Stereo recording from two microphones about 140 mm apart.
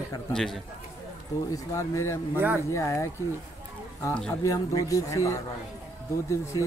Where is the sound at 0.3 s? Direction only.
5° left (ahead or behind).